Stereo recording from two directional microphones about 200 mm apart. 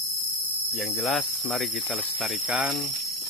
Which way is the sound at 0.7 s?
Centre (ahead or behind).